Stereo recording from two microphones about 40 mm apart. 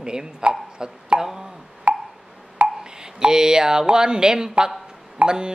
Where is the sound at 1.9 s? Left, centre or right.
Right.